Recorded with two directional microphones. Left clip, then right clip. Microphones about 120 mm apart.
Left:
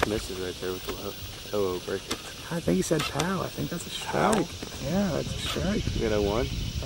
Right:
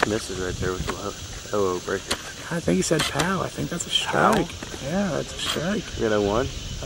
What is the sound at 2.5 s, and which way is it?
Speech, 5° right (ahead or behind).